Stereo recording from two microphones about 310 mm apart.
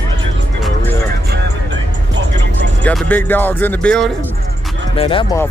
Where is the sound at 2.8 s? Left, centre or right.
Centre.